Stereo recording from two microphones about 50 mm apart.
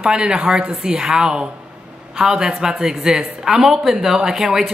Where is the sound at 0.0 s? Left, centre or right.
Centre.